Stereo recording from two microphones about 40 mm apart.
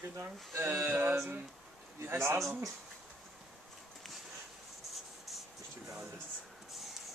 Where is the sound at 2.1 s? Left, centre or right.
Right.